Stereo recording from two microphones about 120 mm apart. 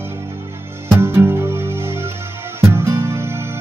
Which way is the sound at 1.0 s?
20° right (ahead or behind).